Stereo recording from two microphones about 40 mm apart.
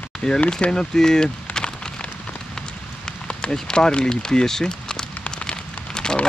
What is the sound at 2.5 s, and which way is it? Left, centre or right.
Rain on surface, centre.